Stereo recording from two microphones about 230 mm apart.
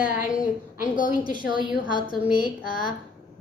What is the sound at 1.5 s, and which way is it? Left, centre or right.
Speech, centre.